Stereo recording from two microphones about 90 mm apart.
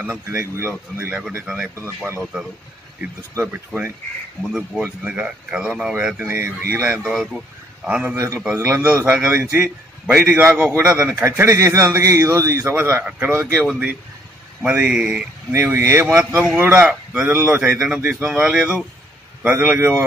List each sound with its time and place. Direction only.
0.0 s a man's voice: 30° right (ahead or behind)
4.4 s a man's voice: 5° right (ahead or behind); by 7.1 s 25° right (ahead or behind)
7.2 s speech: centre (ahead or behind)
7.8 s speech: 20° right (ahead or behind)
8.5 s a man's voice: 30° right (ahead or behind)
12.6 s a man's voice: 25° right (ahead or behind)
13.6 s speech: 15° right (ahead or behind)
15.5 s a man's voice: 25° right (ahead or behind)
16.5 s a man's voice: 20° right (ahead or behind)